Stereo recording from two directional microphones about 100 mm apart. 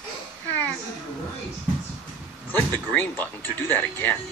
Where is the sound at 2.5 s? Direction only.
20° left (ahead or behind).